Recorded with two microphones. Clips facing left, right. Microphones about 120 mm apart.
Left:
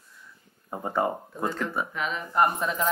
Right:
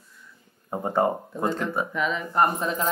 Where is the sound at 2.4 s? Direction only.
35° right (ahead or behind).